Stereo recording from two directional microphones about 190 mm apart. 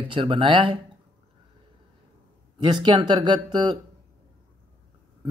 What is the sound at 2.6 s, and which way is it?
Speech, 25° right (ahead or behind).